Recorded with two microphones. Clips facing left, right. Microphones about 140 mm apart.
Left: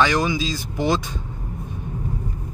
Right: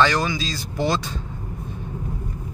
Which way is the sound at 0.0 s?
15° left (ahead or behind).